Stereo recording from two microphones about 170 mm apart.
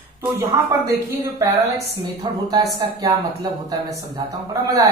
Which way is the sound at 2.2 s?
25° right (ahead or behind).